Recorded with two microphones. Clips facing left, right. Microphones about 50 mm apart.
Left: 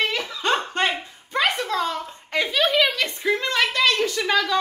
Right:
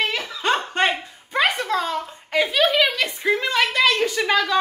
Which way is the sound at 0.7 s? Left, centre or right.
Centre.